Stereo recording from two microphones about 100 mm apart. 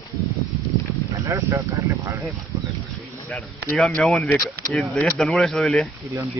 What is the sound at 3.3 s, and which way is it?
Speech, 10° left (ahead or behind).